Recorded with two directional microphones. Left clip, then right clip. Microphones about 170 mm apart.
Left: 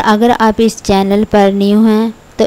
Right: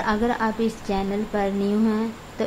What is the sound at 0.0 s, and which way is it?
Speech, 50° left (ahead or behind).